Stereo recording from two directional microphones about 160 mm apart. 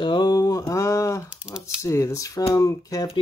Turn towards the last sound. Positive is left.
turn(degrees=20)  # may be behind; listen again after turning